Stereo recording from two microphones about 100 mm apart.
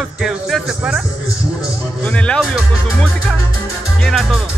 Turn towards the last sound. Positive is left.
turn(degrees=0)  # may be behind; listen again after turning